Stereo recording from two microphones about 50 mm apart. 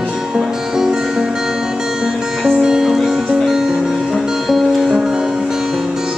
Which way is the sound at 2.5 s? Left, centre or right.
Centre.